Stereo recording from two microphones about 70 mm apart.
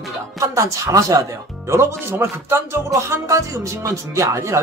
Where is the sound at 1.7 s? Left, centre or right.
Right.